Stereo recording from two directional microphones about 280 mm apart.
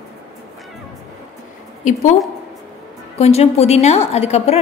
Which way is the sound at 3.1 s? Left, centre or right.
Left.